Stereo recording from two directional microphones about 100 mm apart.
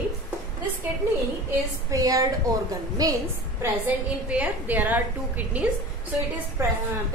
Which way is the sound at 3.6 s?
15° right (ahead or behind).